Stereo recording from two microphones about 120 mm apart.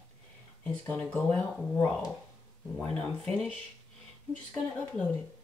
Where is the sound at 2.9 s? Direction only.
10° left (ahead or behind).